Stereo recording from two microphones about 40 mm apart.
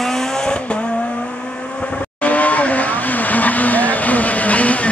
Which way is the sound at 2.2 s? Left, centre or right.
Left.